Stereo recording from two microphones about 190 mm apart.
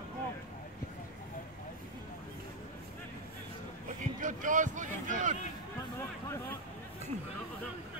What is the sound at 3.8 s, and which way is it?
Vehicle, 45° right (ahead or behind).